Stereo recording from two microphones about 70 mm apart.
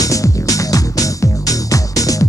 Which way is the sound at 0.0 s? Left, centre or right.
Left.